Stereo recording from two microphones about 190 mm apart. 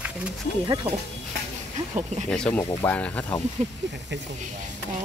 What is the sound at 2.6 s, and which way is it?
Speech, 15° left (ahead or behind).